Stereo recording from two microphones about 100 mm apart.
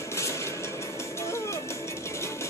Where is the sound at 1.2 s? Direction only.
30° left (ahead or behind).